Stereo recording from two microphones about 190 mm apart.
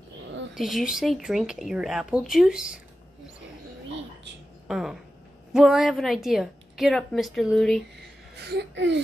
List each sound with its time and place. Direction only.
0.6 s a woman's voice: centre (ahead or behind)
4.6 s a sound: centre (ahead or behind)
5.5 s a woman's voice: centre (ahead or behind)
8.5 s speech: 65° right (ahead or behind)